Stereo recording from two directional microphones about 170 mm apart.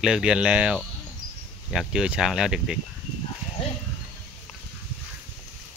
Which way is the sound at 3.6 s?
30° left (ahead or behind).